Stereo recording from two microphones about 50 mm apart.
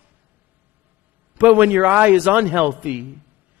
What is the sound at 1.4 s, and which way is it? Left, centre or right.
A man's voice, right.